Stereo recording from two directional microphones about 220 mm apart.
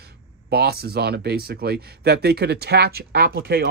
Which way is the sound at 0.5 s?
45° right (ahead or behind).